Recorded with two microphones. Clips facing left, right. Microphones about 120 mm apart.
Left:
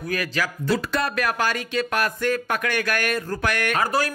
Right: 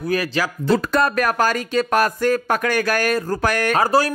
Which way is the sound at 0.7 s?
45° right (ahead or behind).